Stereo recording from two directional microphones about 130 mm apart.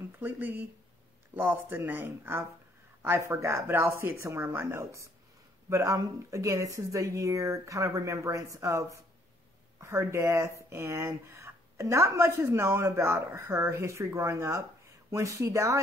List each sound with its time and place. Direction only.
0.2 s speech: 15° right (ahead or behind)